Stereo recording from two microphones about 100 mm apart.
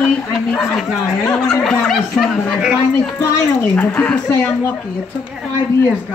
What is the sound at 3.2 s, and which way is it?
Speech, 25° left (ahead or behind).